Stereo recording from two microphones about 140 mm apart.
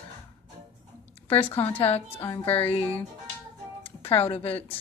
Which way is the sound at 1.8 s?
45° left (ahead or behind).